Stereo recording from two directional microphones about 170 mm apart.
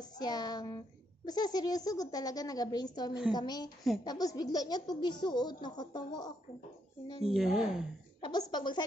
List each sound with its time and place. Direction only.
0.0 s speech: 25° left (ahead or behind)
7.2 s a woman's voice: centre (ahead or behind)
8.2 s speech: 25° left (ahead or behind)